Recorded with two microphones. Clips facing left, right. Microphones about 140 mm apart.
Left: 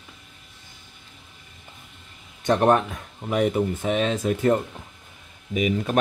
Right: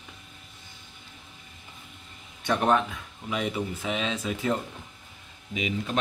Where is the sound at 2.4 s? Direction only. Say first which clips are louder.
Left 5 dB; 45° left (ahead or behind).